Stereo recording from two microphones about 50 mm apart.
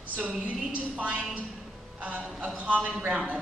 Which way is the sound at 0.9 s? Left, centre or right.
Right.